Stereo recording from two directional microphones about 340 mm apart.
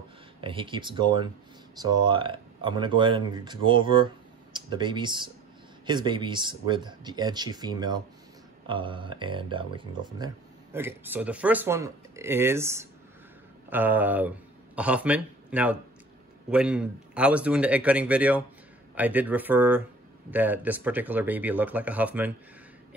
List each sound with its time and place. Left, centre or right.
0.4 s speech: centre